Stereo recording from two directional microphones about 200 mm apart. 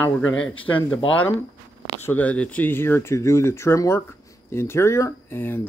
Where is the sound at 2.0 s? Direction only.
5° left (ahead or behind).